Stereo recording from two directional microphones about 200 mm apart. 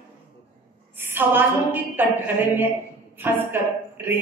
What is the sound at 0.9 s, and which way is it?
A woman's voice, 10° right (ahead or behind).